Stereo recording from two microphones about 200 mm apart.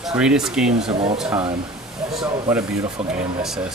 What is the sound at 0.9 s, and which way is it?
Speech, 30° right (ahead or behind).